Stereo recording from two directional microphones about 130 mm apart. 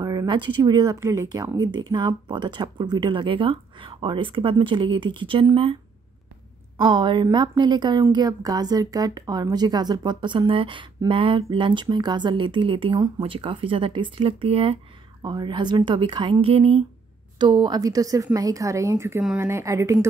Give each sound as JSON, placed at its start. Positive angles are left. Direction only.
{"t": 0.0, "sound": "speech", "side_deg": -30}
{"t": 0.9, "sound": "speech", "side_deg": -20}
{"t": 6.8, "sound": "speech", "side_deg": -35}
{"t": 15.2, "sound": "speech", "side_deg": -35}
{"t": 17.4, "sound": "a woman's voice", "side_deg": -35}